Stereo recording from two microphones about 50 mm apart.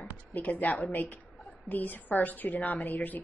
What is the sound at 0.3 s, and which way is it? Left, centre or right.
A woman's voice, left.